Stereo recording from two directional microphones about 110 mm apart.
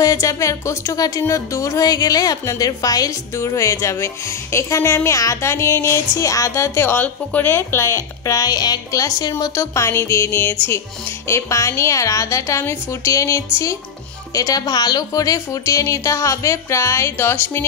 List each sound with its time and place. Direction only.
0.0 s speech: 30° left (ahead or behind)